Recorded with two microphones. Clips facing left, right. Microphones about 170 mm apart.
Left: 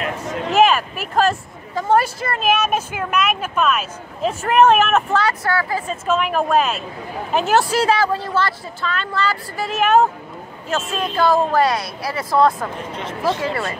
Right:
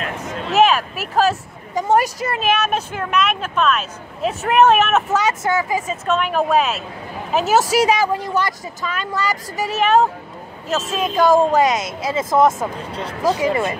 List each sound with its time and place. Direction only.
0.5 s speech: centre (ahead or behind)
1.8 s speech: 15° right (ahead or behind)
2.4 s speech: centre (ahead or behind)
5.1 s speech: 20° right (ahead or behind)
5.9 s speech: centre (ahead or behind)
7.7 s speech: 15° right (ahead or behind)
9.8 s speech: centre (ahead or behind)
11.0 s speech: 10° right (ahead or behind)